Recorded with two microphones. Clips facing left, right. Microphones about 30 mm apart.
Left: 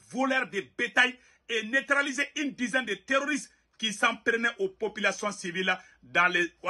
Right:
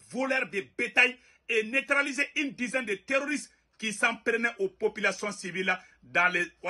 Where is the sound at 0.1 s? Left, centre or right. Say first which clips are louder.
Left 2 dB; right.